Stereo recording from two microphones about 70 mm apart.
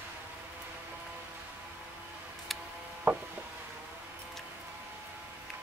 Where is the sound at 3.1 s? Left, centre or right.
Right.